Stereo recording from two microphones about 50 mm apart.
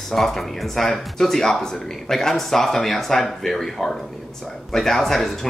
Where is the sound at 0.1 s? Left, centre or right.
Centre.